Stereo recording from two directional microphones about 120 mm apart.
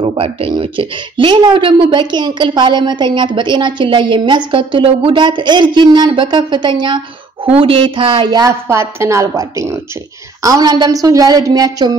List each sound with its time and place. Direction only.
0.0 s a woman's voice: 50° right (ahead or behind)
7.4 s a woman's voice: 50° right (ahead or behind); by 8.5 s 35° right (ahead or behind)
8.6 s a woman's voice: 20° right (ahead or behind)